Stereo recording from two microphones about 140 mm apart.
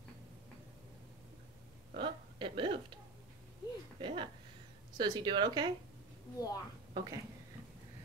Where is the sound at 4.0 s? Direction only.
35° right (ahead or behind).